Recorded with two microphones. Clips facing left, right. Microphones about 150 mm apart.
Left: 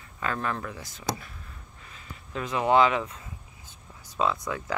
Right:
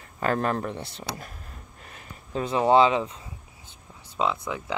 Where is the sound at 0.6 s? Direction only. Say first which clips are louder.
Right 6 dB; 30° right (ahead or behind).